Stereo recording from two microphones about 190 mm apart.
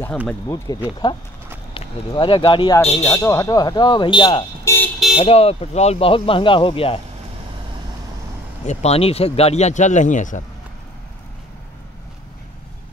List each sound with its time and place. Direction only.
0.5 s speech: 15° left (ahead or behind); by 3.1 s 35° left (ahead or behind)
3.1 s speech: 15° left (ahead or behind)
8.6 s speech: 35° left (ahead or behind)